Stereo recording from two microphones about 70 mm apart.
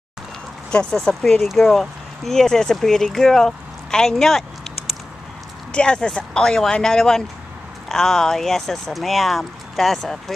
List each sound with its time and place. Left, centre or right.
0.9 s speech: centre